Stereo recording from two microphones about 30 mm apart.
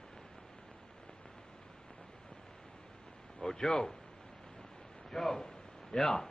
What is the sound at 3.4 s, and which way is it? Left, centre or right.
Speech, left.